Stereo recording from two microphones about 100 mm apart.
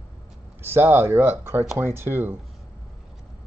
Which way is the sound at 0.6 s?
20° right (ahead or behind).